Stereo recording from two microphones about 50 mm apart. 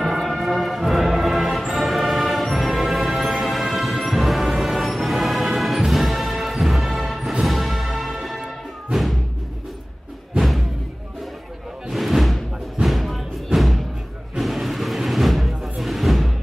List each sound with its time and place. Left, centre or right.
0.0 s music: centre
11.9 s music: centre